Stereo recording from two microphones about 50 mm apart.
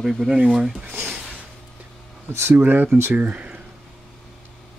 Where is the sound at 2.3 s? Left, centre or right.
Right.